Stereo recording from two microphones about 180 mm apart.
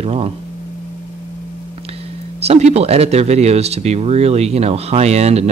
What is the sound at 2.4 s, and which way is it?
Speech, 35° right (ahead or behind).